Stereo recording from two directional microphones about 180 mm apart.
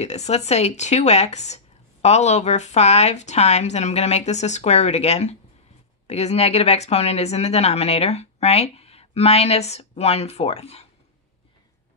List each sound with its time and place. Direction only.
0.0 s speech: 40° left (ahead or behind)